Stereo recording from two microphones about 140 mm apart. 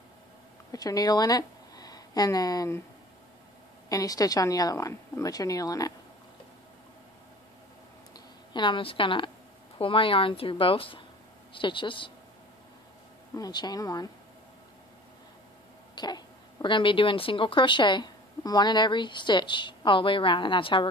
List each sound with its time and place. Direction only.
0.7 s speech: 25° left (ahead or behind)
3.9 s a woman's voice: 25° left (ahead or behind)
8.1 s a sound: 35° left (ahead or behind)
9.8 s speech: 40° left (ahead or behind)
13.3 s a woman's voice: 30° left (ahead or behind)
15.9 s speech: 30° left (ahead or behind)